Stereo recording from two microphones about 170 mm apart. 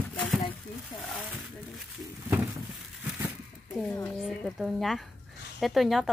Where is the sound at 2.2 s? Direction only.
15° right (ahead or behind).